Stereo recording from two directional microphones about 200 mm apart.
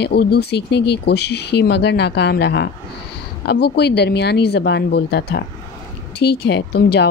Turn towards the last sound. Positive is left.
turn(degrees=55)  # may be behind; listen again after turning